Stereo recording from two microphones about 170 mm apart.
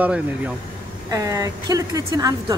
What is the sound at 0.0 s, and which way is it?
Speech, 10° right (ahead or behind).